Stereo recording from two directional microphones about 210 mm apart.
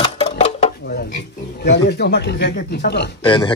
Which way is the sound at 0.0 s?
30° left (ahead or behind).